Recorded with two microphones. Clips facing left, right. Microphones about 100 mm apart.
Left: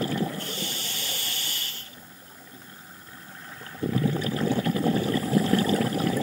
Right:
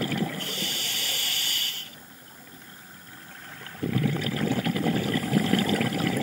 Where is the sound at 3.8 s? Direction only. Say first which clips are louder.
Left 1 dB; 30° left (ahead or behind).